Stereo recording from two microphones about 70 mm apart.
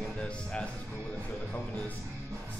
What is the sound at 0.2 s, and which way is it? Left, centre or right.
Speech, centre.